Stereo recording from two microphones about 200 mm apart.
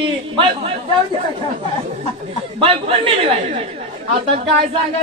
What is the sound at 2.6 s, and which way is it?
Speech, 30° right (ahead or behind).